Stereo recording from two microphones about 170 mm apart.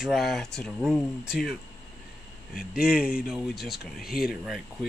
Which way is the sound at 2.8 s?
5° right (ahead or behind).